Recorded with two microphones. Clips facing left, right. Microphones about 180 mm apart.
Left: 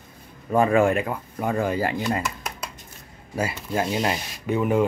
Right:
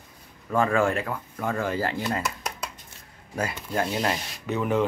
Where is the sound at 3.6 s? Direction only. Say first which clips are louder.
Left 2 dB; 5° left (ahead or behind).